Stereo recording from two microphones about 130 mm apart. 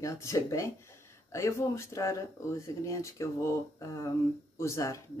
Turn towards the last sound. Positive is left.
turn(degrees=25)  # may be behind; listen again after turning